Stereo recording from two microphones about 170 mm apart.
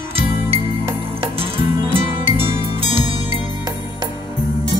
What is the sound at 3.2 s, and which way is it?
Music, 30° left (ahead or behind).